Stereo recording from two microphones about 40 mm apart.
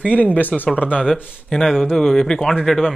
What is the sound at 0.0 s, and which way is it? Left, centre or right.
Speech, left.